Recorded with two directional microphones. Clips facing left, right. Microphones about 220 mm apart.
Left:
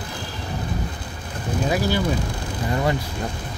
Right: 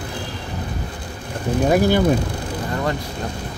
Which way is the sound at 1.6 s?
55° right (ahead or behind).